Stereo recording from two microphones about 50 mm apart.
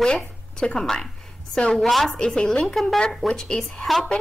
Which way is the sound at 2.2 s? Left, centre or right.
Centre.